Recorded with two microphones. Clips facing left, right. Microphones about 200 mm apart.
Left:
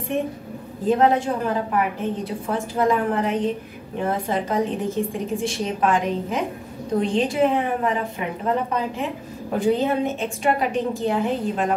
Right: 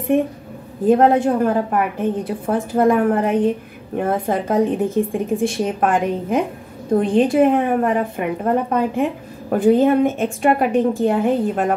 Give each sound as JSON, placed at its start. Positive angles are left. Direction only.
{"t": 0.8, "sound": "a woman's voice", "side_deg": -55}